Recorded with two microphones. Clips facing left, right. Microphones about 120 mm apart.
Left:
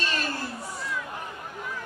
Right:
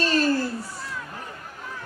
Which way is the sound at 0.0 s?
35° right (ahead or behind).